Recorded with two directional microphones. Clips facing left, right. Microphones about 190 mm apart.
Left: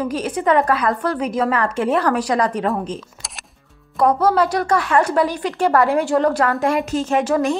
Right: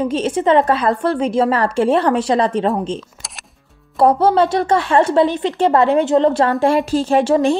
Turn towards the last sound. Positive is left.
turn(degrees=-30)  # may be behind; listen again after turning